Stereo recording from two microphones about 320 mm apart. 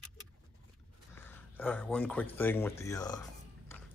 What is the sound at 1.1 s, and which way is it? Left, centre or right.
Speech, centre.